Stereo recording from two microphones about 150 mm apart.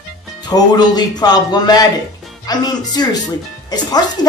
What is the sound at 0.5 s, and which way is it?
A woman's voice, 25° left (ahead or behind).